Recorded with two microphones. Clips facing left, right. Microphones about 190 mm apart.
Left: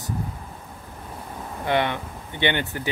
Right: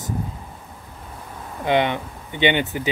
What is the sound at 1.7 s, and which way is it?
Speech, 20° right (ahead or behind).